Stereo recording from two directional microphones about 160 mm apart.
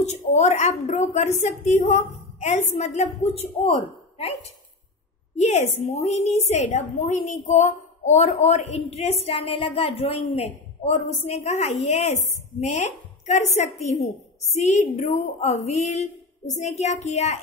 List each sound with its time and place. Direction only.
0.0 s a woman's voice: 45° left (ahead or behind)